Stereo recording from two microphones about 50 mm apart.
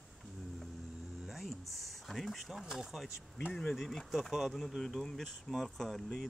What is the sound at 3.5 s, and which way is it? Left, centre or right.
Speech, centre.